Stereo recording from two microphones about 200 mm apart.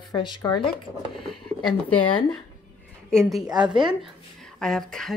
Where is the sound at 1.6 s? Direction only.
25° left (ahead or behind).